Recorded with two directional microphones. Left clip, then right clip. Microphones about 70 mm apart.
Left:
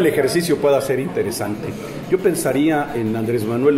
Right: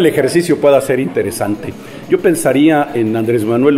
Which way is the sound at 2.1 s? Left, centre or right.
Right.